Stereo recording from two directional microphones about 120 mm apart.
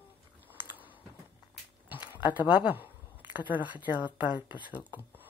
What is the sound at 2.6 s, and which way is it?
Speech, 15° right (ahead or behind).